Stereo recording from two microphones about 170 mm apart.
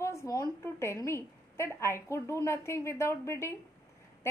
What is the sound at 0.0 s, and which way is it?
A woman's voice, 15° left (ahead or behind).